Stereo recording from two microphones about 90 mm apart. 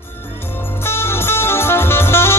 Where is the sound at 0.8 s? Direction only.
25° left (ahead or behind).